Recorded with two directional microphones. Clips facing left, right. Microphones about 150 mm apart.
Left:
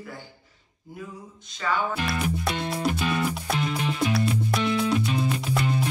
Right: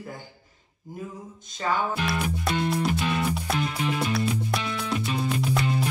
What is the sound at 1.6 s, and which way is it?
Music, 30° right (ahead or behind).